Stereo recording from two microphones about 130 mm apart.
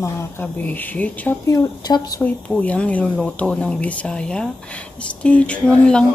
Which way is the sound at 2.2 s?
10° left (ahead or behind).